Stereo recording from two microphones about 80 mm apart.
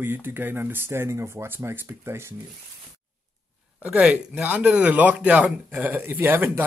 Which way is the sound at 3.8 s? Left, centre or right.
Centre.